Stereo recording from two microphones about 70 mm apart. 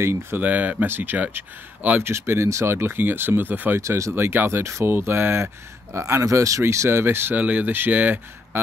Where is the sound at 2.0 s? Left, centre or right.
Right.